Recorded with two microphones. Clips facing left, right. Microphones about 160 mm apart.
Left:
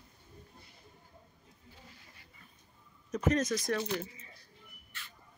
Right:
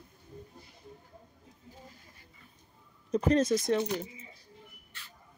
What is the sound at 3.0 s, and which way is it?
Speech, 30° right (ahead or behind).